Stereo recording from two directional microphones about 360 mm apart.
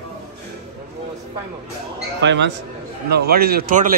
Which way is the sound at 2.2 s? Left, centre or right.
Right.